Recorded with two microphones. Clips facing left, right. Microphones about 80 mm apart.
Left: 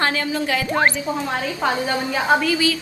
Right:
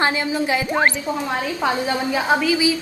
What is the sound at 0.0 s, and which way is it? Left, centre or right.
Speech, centre.